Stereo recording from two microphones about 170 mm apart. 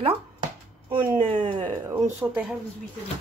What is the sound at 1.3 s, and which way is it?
Speech, 30° right (ahead or behind).